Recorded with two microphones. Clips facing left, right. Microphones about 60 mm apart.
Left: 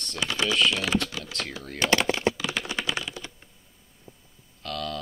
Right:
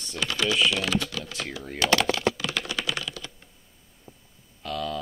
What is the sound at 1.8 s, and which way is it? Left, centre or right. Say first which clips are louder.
Typing: right 1 dB; left.